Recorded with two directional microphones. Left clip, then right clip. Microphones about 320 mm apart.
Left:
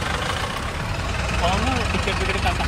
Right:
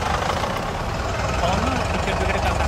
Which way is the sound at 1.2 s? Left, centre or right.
Right.